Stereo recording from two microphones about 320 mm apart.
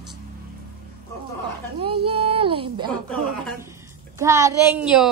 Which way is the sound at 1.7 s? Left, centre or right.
Centre.